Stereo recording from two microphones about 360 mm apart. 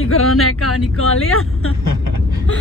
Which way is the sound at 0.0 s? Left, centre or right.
Left.